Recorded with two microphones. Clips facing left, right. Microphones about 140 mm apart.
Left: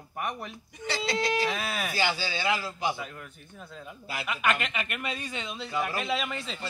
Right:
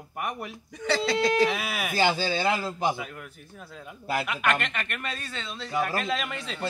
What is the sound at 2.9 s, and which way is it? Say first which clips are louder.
A man's voice: right 2 dB; 5° right (ahead or behind).